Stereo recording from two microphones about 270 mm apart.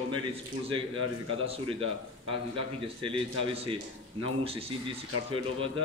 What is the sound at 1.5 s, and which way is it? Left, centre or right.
A man's voice, centre.